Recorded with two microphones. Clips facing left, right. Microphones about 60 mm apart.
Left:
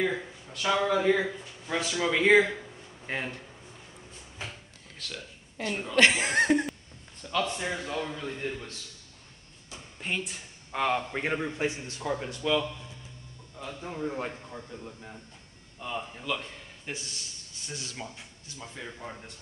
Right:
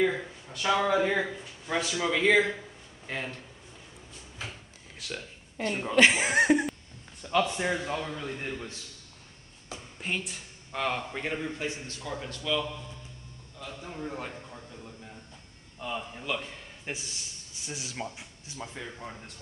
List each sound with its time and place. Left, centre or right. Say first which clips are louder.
0.0 s a man's voice: right 2 dB; centre
2.0 s speech: left 2 dB; centre
3.1 s a man's voice: left 2 dB; left
5.0 s a man's voice: right 2 dB; centre
9.9 s a woman's voice: left 1 dB; centre
10.7 s speech: left 3 dB; centre
11.1 s a man's voice: left 3 dB; left
15.8 s a man's voice: even; centre
18.9 s speech: left 1 dB; centre